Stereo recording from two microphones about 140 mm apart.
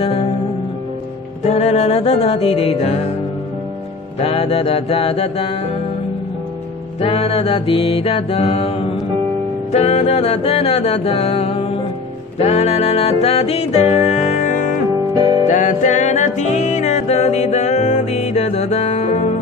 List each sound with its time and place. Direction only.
0.0 s music: 45° left (ahead or behind)
1.4 s music: 50° left (ahead or behind)
4.2 s music: 45° left (ahead or behind)
7.0 s music: 45° left (ahead or behind); by 14.7 s 65° left (ahead or behind)
15.1 s music: 25° right (ahead or behind)
15.4 s music: 60° left (ahead or behind)